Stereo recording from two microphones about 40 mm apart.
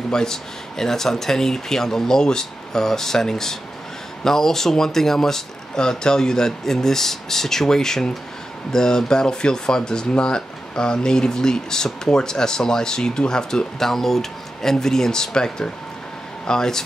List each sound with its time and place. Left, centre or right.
0.1 s speech: centre